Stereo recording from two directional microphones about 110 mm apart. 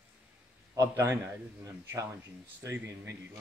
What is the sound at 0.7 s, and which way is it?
Speech, 25° right (ahead or behind).